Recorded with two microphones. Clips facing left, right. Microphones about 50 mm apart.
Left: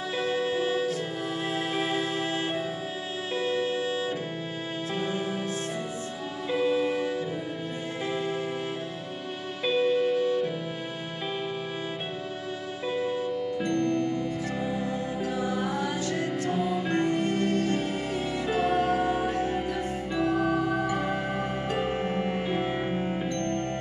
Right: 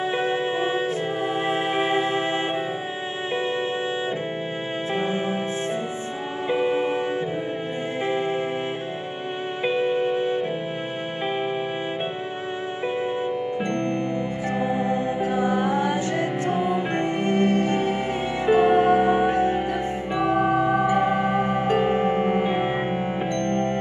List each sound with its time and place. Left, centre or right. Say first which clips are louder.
0.2 s music: right 4 dB; right
4.9 s music: right 5 dB; right
6.5 s music: right 3 dB; right
9.7 s music: right 1 dB; right
13.6 s music: right 1 dB; right